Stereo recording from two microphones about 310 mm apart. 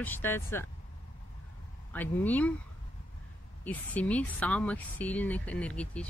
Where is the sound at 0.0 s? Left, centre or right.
Centre.